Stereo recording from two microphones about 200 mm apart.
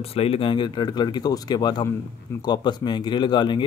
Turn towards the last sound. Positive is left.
turn(degrees=25)  # may be behind; listen again after turning